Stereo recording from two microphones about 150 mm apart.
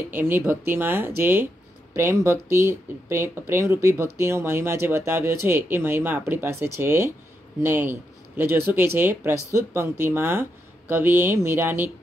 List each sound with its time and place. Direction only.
0.1 s speech: 15° right (ahead or behind)